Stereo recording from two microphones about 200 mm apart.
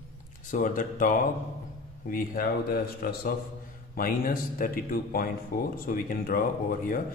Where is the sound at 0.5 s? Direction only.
40° left (ahead or behind).